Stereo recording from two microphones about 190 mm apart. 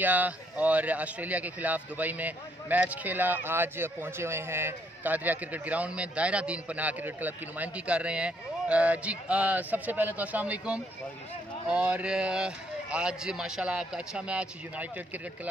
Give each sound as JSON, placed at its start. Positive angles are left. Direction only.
{"t": 0.0, "sound": "a man's voice", "side_deg": -10}